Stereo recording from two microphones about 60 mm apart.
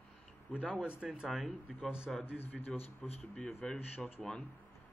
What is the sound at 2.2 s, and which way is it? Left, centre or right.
A man's voice, left.